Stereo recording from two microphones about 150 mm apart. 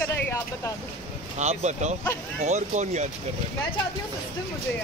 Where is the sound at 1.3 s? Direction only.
50° right (ahead or behind).